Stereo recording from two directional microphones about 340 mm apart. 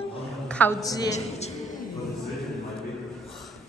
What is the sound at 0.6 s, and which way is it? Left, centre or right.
Speech, centre.